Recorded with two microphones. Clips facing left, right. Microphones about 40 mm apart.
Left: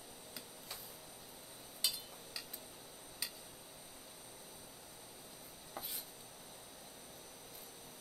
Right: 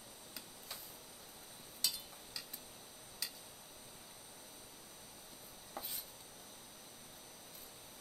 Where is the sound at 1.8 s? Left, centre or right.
Centre.